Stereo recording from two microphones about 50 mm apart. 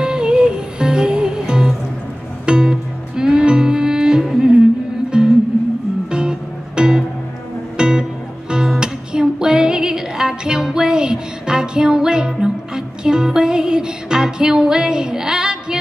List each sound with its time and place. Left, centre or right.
0.0 s music: centre